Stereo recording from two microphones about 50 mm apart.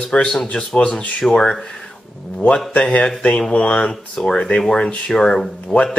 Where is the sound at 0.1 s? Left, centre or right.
Centre.